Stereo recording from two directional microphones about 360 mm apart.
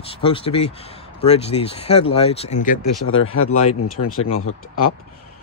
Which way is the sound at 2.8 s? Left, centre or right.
Left.